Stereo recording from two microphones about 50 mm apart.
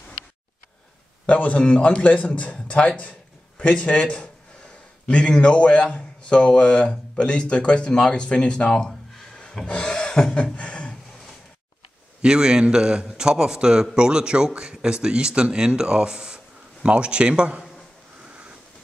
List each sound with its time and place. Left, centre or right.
1.2 s a man's voice: left
9.7 s filing: centre
10.3 s beatboxing: left
12.2 s a man's voice: centre